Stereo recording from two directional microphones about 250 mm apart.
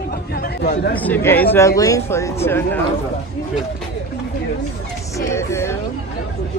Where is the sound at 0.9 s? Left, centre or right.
Centre.